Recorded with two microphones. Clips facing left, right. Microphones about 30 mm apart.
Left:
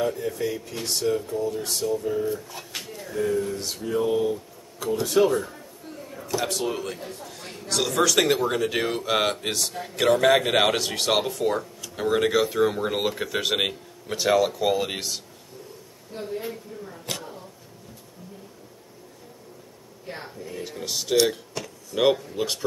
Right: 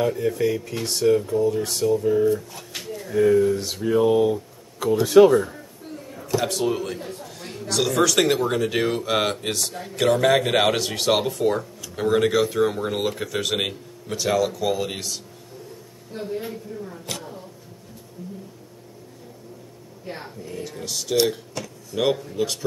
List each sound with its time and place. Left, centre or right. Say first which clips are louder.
0.0 s speech: right 4 dB; centre
2.5 s speech: right 2 dB; centre
3.2 s speech: right 8 dB; centre
5.2 s speech: right 7 dB; centre
6.1 s a man's voice: right 3 dB; centre
16.2 s a man's voice: right 2 dB; centre
20.1 s a man's voice: right 1 dB; centre
20.8 s speech: left 1 dB; left
21.3 s a sound: right 2 dB; centre
22.0 s speech: left 1 dB; centre